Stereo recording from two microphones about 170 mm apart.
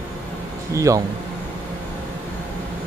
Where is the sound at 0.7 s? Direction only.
20° right (ahead or behind).